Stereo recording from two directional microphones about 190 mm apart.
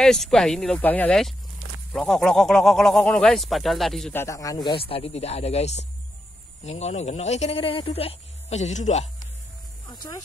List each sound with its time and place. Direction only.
0.0 s speech: 5° left (ahead or behind)
4.2 s speech: 15° left (ahead or behind); by 9.1 s 40° left (ahead or behind)
9.8 s music: 20° left (ahead or behind)